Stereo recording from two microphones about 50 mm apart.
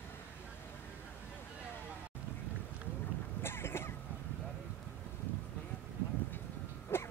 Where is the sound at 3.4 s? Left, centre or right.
Left.